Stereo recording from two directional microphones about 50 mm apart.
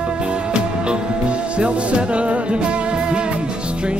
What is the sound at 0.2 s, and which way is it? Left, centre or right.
Music, right.